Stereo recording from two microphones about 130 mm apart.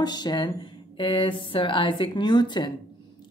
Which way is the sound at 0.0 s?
35° left (ahead or behind).